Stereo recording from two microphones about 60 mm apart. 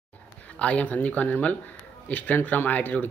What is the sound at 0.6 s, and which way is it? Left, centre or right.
A man's voice, left.